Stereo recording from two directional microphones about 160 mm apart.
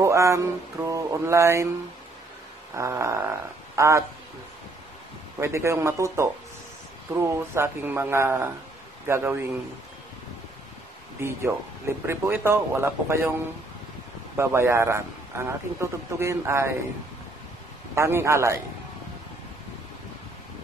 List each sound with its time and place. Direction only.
0.0 s mantra: 20° right (ahead or behind)
2.7 s a sound: 20° right (ahead or behind)
5.4 s a man's voice: 15° right (ahead or behind)
11.1 s a man's voice: 15° right (ahead or behind)
14.3 s a man's voice: 15° right (ahead or behind)
17.9 s a man's voice: 15° right (ahead or behind)